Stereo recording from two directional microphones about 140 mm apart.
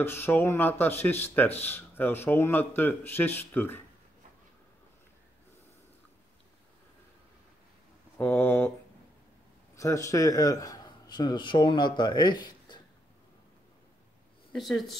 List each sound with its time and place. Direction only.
0.0 s speech: 15° left (ahead or behind)
8.2 s speech: 15° left (ahead or behind)
9.8 s speech: 20° left (ahead or behind)
14.5 s speech: centre (ahead or behind)